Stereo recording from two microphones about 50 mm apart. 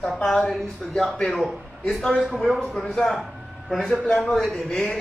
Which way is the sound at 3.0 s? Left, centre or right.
Centre.